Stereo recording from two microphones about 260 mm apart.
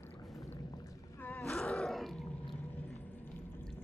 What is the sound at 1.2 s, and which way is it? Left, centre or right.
Wild animals, centre.